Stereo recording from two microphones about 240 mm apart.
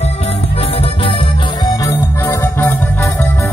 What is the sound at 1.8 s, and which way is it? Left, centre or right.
Music, centre.